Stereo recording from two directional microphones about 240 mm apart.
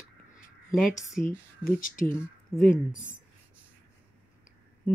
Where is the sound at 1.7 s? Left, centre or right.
Left.